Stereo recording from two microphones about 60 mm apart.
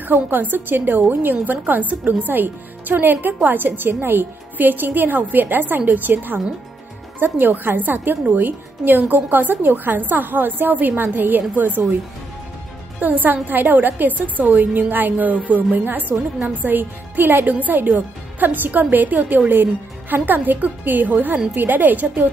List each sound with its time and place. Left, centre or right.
0.0 s a woman's voice: right
13.0 s a woman's voice: right